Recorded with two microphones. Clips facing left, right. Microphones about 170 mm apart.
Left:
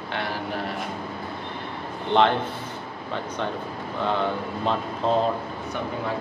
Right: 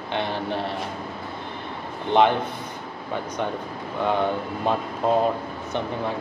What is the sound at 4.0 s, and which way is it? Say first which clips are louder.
Speech: right 2 dB; 15° right (ahead or behind).